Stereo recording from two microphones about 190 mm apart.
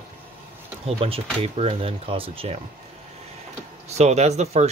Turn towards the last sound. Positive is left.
turn(degrees=-35)  # may be behind; listen again after turning